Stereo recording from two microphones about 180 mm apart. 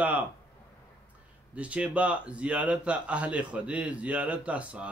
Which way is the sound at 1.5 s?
5° right (ahead or behind).